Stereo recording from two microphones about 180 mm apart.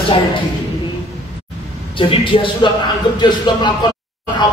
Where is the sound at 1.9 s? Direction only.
30° left (ahead or behind).